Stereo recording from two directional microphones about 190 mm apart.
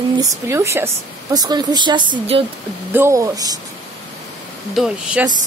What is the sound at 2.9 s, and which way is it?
Speech, 15° right (ahead or behind).